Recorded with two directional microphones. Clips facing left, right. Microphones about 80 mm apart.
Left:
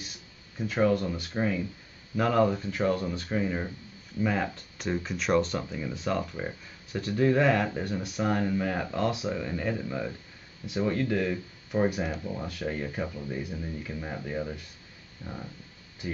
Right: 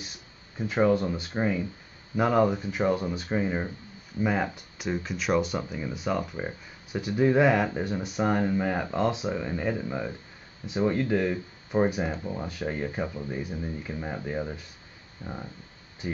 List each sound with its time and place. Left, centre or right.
0.6 s speech: centre
4.8 s speech: centre
15.2 s speech: right